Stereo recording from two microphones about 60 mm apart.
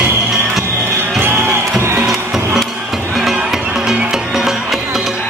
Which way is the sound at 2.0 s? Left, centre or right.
Centre.